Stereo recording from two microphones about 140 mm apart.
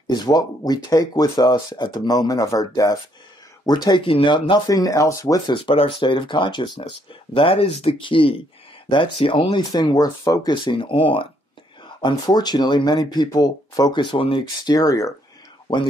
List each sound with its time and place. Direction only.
0.0 s speech: 30° left (ahead or behind)
5.5 s speech: 40° left (ahead or behind)